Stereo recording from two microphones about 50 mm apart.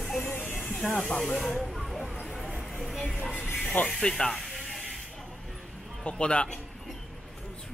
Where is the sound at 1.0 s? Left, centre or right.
Centre.